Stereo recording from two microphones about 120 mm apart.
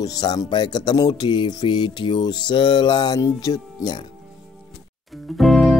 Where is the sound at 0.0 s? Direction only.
35° left (ahead or behind).